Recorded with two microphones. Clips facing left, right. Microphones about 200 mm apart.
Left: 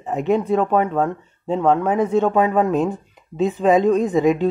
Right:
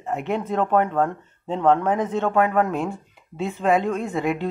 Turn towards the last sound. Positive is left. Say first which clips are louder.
# left 8 dB
turn(degrees=20)  # may be behind; listen again after turning